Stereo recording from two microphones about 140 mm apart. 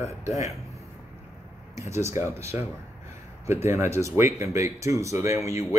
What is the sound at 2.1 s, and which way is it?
Speech, 20° right (ahead or behind).